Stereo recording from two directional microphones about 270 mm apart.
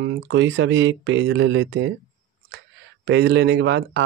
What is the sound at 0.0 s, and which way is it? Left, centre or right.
Speech, right.